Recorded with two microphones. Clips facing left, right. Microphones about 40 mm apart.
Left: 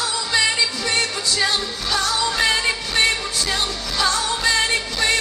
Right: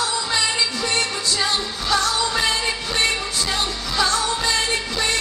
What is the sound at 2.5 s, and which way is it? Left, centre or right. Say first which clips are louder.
Music: left 2 dB; centre.